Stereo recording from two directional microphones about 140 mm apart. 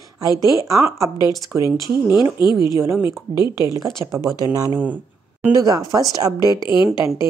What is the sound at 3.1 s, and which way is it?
Speech, 30° left (ahead or behind).